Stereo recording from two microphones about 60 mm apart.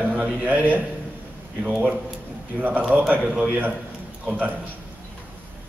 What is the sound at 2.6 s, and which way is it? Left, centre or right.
Speech, right.